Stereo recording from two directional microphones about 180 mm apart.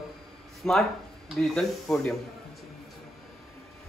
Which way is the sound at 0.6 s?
5° left (ahead or behind).